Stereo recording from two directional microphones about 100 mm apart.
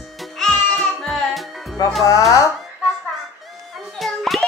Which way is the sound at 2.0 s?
35° left (ahead or behind).